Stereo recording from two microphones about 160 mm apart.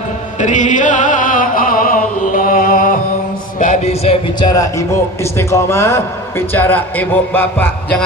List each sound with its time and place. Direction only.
0.4 s music: 50° left (ahead or behind)
3.5 s a sound: 50° left (ahead or behind)
4.5 s a man's voice: 20° left (ahead or behind)